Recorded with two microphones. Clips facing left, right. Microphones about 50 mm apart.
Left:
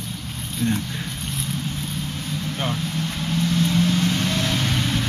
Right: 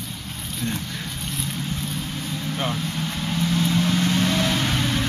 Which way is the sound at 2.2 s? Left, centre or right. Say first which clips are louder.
Right 1 dB; centre.